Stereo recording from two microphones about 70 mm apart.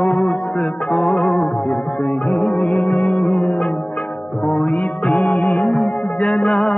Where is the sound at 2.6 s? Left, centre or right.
Left.